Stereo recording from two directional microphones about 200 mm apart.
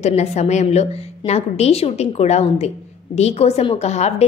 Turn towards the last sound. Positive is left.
turn(degrees=35)  # may be behind; listen again after turning